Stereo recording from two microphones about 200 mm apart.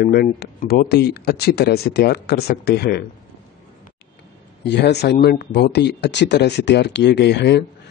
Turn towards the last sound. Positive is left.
turn(degrees=55)  # may be behind; listen again after turning